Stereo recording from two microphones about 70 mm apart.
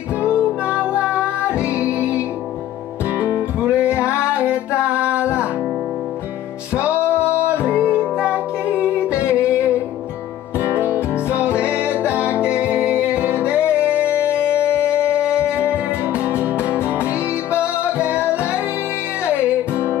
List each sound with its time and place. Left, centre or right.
0.3 s music: centre
1.6 s music: left
2.0 s music: centre
3.6 s music: centre
6.9 s music: left
7.2 s music: centre
7.7 s music: left
8.0 s music: centre
10.8 s music: right
13.6 s music: left
15.1 s music: centre
17.9 s music: centre